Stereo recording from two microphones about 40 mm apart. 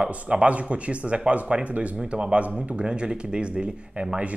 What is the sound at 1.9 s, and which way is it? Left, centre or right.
Speech, right.